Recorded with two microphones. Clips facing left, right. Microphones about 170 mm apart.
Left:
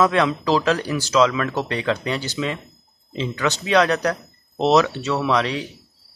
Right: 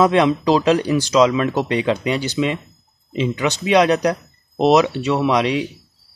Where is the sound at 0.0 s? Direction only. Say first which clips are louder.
Right 4 dB; 20° right (ahead or behind).